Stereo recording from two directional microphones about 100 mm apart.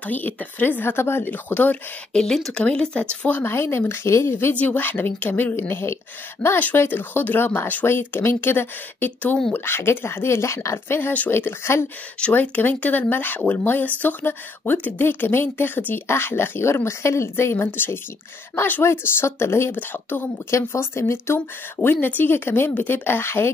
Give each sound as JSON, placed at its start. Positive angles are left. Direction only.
{"t": 0.0, "sound": "speech", "side_deg": 15}
{"t": 2.1, "sound": "speech", "side_deg": 5}
{"t": 12.2, "sound": "speech", "side_deg": 15}